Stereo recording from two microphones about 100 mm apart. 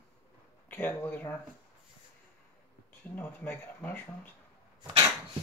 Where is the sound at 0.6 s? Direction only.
20° left (ahead or behind).